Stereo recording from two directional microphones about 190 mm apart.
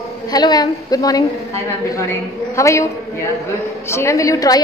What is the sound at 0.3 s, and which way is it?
A woman's voice, 20° left (ahead or behind).